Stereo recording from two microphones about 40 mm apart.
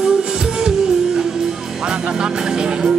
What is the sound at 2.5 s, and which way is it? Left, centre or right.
Music, right.